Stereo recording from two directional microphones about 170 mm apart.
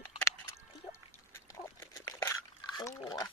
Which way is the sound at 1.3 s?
20° left (ahead or behind).